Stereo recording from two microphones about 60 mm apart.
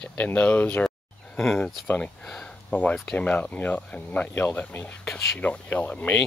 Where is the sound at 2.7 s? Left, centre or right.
Left.